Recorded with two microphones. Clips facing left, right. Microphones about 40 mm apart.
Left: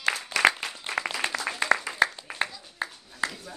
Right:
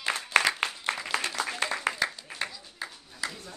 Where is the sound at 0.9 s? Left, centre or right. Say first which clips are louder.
Left 3 dB; right.